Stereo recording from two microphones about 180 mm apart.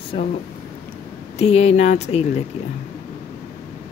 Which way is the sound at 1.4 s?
35° left (ahead or behind).